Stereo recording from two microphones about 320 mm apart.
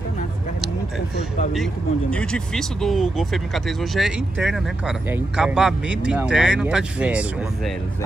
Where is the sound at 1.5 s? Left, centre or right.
Centre.